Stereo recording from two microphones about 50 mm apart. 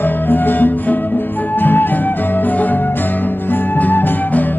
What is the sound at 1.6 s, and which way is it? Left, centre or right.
Flute, left.